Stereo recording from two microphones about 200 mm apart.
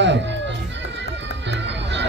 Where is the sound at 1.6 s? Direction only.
60° right (ahead or behind).